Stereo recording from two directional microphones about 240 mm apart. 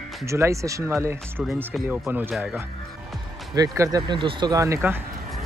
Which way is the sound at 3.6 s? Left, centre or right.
Centre.